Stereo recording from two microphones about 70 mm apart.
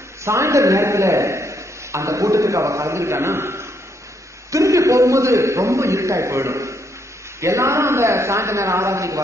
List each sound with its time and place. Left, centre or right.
0.2 s a man's voice: right